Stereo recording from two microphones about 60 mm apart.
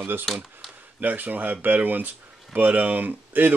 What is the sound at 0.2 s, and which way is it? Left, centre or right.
Speech, centre.